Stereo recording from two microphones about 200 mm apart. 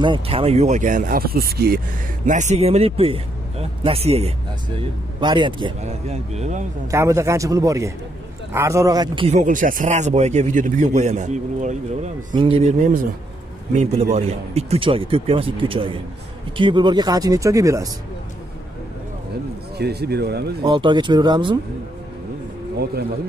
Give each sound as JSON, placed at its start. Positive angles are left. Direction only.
{"t": 0.0, "sound": "speech", "side_deg": -25}
{"t": 2.2, "sound": "speech", "side_deg": -35}
{"t": 5.8, "sound": "speech", "side_deg": -35}
{"t": 6.9, "sound": "speech", "side_deg": -15}
{"t": 14.1, "sound": "speech", "side_deg": -30}
{"t": 19.8, "sound": "speech", "side_deg": -55}
{"t": 20.6, "sound": "speech", "side_deg": -25}